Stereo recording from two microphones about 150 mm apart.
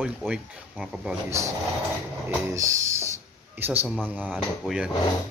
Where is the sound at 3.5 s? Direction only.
10° right (ahead or behind).